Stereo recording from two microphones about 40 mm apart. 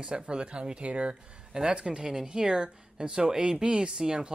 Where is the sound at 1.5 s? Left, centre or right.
Centre.